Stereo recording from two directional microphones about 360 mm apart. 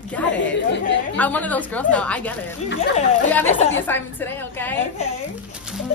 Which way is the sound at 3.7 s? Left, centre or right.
Centre.